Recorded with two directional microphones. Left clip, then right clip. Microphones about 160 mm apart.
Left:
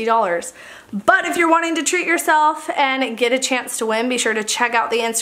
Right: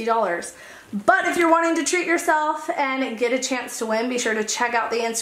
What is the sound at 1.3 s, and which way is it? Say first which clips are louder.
Speech: left 2 dB; 30° left (ahead or behind).